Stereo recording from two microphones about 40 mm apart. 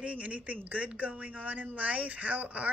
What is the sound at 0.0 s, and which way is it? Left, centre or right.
A man's voice, right.